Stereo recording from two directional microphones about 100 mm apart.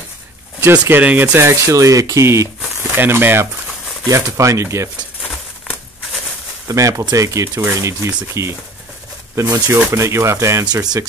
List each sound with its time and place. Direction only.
0.7 s speech: 20° right (ahead or behind)
6.7 s speech: 35° right (ahead or behind)
9.8 s speech: 25° right (ahead or behind)
10.7 s speech: 40° right (ahead or behind)